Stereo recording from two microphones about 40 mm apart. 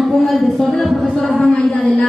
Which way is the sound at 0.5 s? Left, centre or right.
Centre.